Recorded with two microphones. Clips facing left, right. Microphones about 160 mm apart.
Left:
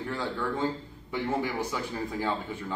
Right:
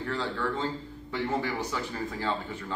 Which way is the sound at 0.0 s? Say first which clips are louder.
Right 1 dB; 10° left (ahead or behind).